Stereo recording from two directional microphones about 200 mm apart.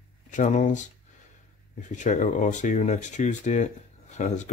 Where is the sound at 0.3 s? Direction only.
40° left (ahead or behind).